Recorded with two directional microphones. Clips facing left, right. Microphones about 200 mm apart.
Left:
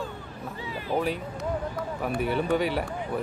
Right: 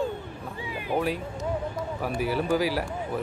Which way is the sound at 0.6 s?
15° right (ahead or behind).